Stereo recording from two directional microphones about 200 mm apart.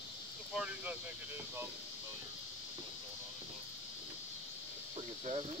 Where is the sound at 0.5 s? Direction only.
5° right (ahead or behind).